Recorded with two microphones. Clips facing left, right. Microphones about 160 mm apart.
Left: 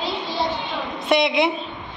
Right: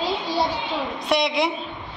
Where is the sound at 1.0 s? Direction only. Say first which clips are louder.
Left 4 dB; centre (ahead or behind).